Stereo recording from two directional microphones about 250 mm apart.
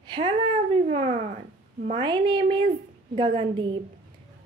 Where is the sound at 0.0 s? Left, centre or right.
Centre.